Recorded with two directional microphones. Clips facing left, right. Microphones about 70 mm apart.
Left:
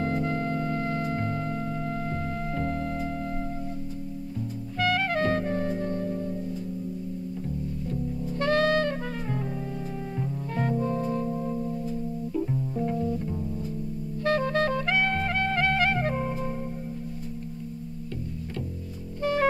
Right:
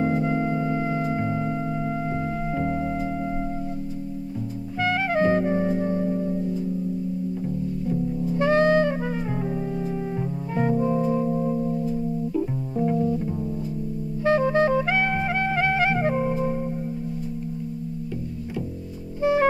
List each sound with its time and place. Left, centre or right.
0.0 s music: centre
4.7 s music: centre
7.9 s music: centre
12.4 s double bass: centre
14.2 s clarinet: centre
19.1 s music: centre